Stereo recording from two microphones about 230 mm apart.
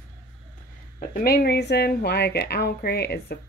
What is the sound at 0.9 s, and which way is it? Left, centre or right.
Speech, left.